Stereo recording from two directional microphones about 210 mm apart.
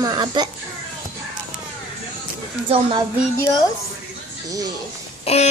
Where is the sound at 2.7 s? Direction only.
25° right (ahead or behind).